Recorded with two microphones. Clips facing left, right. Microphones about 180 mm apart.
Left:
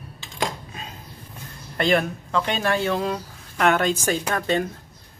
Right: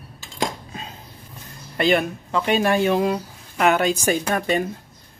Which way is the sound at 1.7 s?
5° right (ahead or behind).